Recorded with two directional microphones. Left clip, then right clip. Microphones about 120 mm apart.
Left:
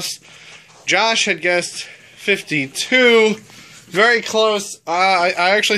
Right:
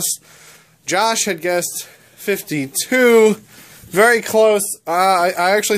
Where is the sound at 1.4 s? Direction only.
20° right (ahead or behind).